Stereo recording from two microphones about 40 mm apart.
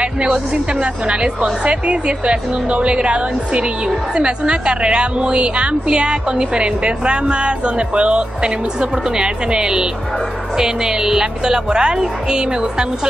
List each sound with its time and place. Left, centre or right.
0.0 s a woman's voice: right